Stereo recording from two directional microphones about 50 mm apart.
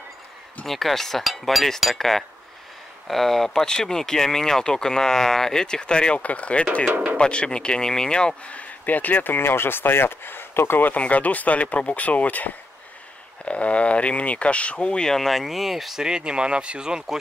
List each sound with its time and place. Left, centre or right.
0.7 s speech: centre
8.5 s speech: left
11.0 s speech: left
15.1 s speech: centre
16.0 s speech: centre